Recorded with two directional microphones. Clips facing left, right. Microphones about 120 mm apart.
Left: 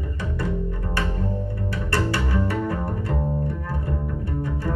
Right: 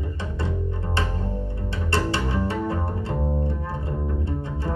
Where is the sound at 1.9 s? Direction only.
25° right (ahead or behind).